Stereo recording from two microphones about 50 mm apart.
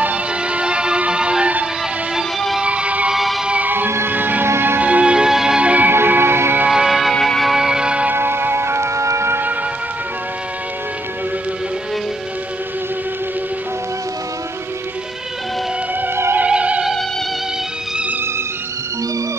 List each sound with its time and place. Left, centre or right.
0.0 s music: right
3.1 s music: centre
3.6 s music: right
4.5 s music: right
4.7 s music: right; by 5.6 s centre
5.6 s music: right
5.9 s music: right
6.7 s music: centre
7.2 s music: centre
7.5 s music: centre
8.1 s music: right
16.4 s music: right